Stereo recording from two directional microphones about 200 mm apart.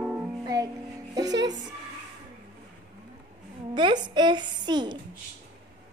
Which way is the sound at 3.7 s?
20° right (ahead or behind).